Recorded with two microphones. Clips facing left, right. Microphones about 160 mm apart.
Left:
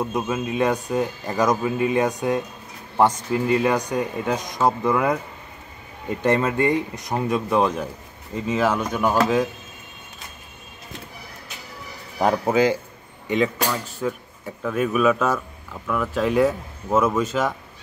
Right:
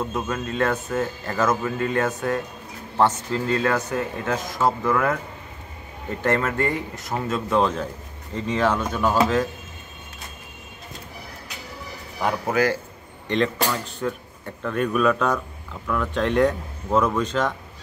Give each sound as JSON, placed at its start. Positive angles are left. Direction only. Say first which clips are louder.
{"t": 0.0, "sound": "speech", "louder": "left 2 dB", "side_deg": 15}
{"t": 12.2, "sound": "speech", "louder": "left 4 dB", "side_deg": 35}
{"t": 13.3, "sound": "speech", "louder": "left 1 dB", "side_deg": 5}